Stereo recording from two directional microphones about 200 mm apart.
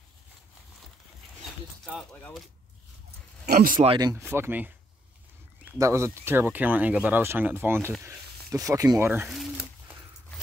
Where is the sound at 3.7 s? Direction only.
20° right (ahead or behind).